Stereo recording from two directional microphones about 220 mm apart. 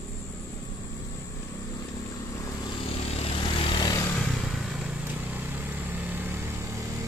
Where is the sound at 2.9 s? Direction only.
25° left (ahead or behind).